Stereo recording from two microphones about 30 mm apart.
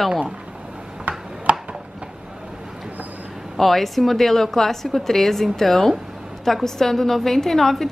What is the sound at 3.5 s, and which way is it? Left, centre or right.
A woman's voice, centre.